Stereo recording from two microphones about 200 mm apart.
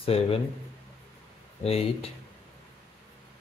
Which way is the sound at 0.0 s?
30° left (ahead or behind).